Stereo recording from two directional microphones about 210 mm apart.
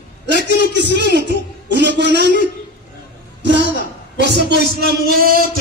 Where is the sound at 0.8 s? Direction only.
55° right (ahead or behind).